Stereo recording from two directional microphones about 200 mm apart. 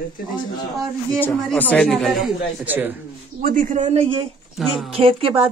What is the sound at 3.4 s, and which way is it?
Speech, 45° right (ahead or behind).